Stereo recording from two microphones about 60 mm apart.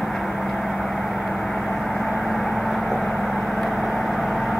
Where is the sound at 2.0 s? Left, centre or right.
Centre.